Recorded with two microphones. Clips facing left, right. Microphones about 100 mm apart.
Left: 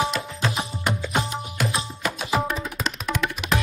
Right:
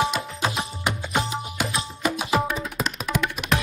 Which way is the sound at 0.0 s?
Centre (ahead or behind).